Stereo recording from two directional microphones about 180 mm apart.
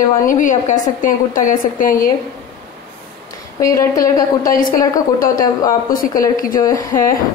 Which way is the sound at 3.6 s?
15° left (ahead or behind).